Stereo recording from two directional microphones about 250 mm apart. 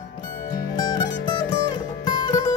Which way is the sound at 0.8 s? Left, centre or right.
Centre.